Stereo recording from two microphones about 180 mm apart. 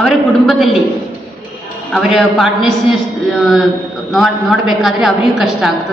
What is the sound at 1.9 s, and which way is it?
Speech, centre (ahead or behind).